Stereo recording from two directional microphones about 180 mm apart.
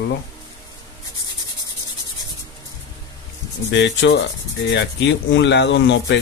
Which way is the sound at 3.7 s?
75° left (ahead or behind).